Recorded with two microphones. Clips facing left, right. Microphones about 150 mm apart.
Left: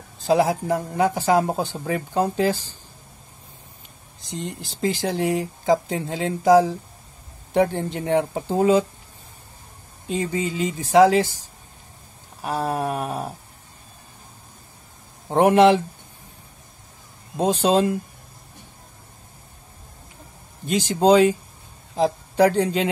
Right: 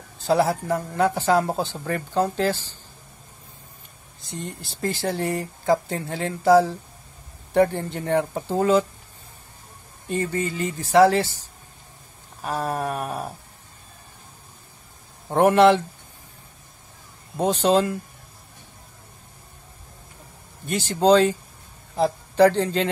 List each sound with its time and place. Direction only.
0.3 s speech: 15° left (ahead or behind)
4.3 s speech: 20° left (ahead or behind)
10.0 s speech: 15° left (ahead or behind)
12.4 s speech: 15° left (ahead or behind)
15.2 s speech: 15° left (ahead or behind)
17.4 s speech: 15° left (ahead or behind)
20.6 s speech: 15° left (ahead or behind)